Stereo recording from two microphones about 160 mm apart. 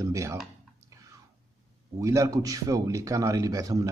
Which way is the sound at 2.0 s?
20° right (ahead or behind).